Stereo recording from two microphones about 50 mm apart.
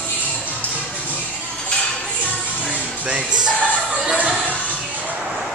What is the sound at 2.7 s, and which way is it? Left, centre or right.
Music, right.